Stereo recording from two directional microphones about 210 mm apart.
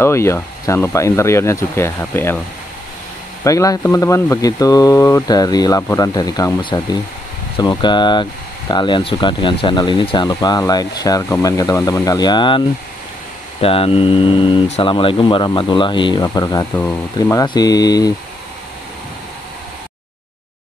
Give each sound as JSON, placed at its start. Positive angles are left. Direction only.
{"t": 0.0, "sound": "speech", "side_deg": 10}
{"t": 3.4, "sound": "speech", "side_deg": 15}